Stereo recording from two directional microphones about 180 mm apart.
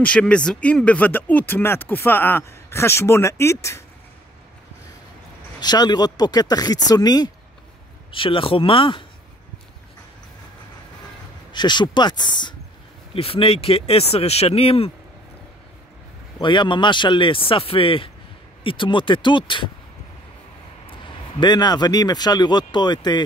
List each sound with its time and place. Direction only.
0.0 s speech: 5° left (ahead or behind)
5.6 s a man's voice: 25° left (ahead or behind)
11.5 s a man's voice: 25° left (ahead or behind)
16.3 s a man's voice: 25° left (ahead or behind)
20.8 s a man's voice: 25° left (ahead or behind)